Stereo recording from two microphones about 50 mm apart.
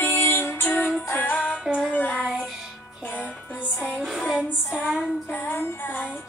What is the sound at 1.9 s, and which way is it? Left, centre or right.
Child singing, left.